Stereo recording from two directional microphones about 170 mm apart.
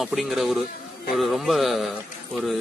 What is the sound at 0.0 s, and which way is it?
Speech, centre (ahead or behind).